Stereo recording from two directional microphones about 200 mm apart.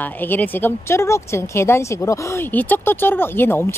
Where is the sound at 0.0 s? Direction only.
10° left (ahead or behind).